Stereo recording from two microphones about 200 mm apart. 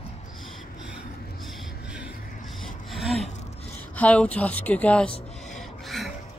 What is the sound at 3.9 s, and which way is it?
Speech, 5° left (ahead or behind).